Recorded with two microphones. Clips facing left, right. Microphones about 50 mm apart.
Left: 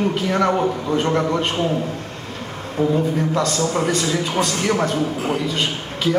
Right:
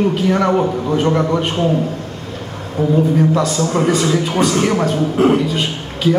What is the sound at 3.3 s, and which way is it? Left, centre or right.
A man's voice, centre.